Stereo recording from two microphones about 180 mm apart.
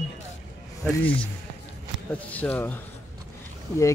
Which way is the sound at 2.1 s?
10° left (ahead or behind).